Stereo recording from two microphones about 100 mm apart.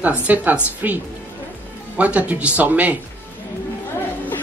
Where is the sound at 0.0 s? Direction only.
15° right (ahead or behind).